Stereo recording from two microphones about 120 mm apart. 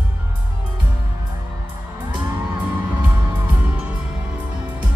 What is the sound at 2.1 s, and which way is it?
Music, 40° right (ahead or behind).